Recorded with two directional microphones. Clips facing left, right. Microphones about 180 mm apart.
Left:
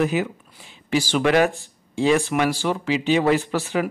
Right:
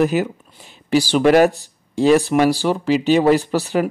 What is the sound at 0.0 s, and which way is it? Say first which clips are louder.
Speech: right 4 dB; 40° right (ahead or behind).